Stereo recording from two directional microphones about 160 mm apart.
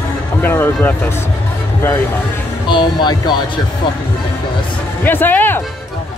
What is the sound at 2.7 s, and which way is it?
Speech, 30° left (ahead or behind).